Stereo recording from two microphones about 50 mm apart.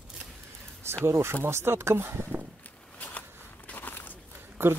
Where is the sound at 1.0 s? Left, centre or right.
Right.